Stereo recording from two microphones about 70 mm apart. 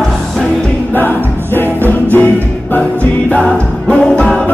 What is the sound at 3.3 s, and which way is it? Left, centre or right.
Music, centre.